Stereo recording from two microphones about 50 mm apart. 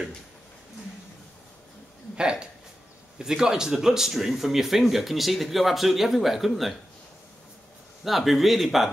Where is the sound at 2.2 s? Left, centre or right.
Centre.